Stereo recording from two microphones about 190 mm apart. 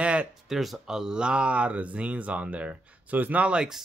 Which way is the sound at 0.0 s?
5° right (ahead or behind).